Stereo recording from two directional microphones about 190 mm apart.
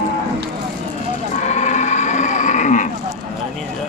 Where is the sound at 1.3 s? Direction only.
35° left (ahead or behind).